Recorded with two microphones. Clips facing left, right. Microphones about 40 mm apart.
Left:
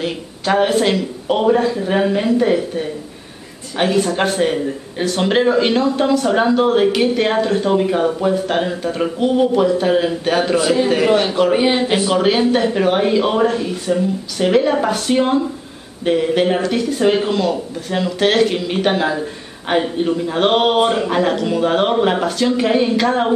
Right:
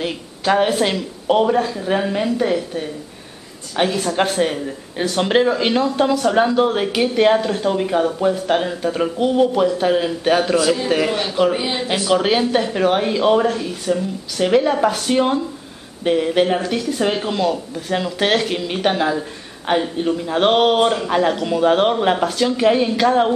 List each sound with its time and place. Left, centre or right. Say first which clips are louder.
0.0 s a man's voice: even; centre
12.1 s speech: right 1 dB; centre